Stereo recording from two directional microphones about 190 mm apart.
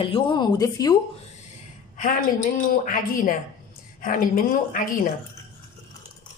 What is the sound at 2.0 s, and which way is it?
A woman's voice, 45° left (ahead or behind).